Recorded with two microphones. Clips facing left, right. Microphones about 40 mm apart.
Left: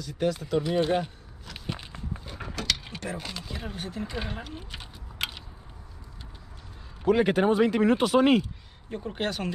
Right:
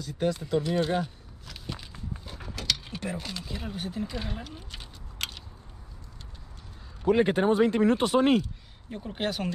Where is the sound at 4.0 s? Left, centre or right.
Centre.